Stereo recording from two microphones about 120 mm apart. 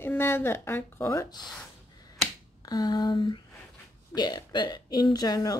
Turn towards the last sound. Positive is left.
turn(degrees=30)  # may be behind; listen again after turning